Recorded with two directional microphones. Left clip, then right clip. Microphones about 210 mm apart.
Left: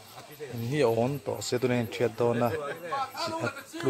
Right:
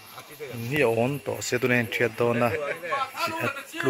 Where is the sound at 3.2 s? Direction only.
5° right (ahead or behind).